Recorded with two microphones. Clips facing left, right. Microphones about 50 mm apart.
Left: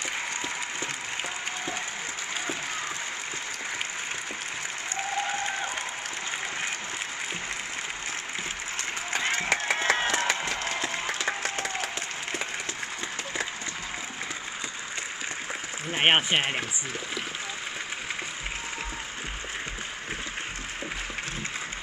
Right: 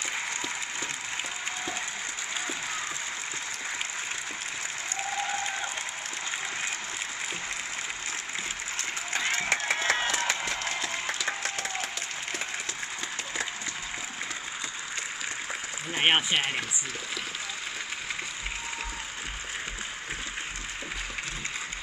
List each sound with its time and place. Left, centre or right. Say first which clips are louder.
5.1 s applause: left 2 dB; left
9.1 s a sound: left 1 dB; left
11.4 s applause: left 2 dB; left
15.9 s speech: left 2 dB; left